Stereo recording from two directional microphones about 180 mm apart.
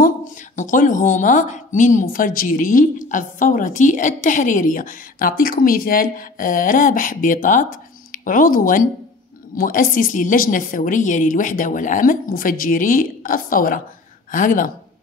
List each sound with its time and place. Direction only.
0.6 s speech: 45° left (ahead or behind)